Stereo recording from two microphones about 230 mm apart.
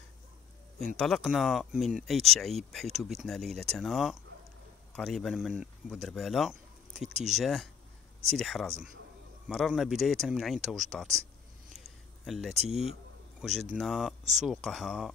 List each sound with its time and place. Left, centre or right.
0.7 s speech: centre
11.7 s a sound: centre
12.6 s speech: centre